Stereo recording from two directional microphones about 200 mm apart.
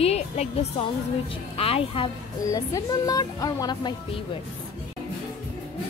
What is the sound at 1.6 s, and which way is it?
Speech, 30° left (ahead or behind).